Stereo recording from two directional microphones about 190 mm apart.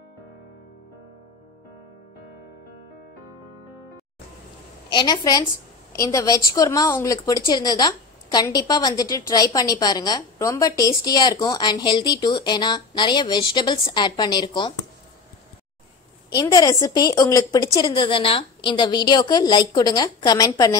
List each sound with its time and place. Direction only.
4.9 s a woman's voice: 20° left (ahead or behind)
16.3 s a woman's voice: 20° left (ahead or behind)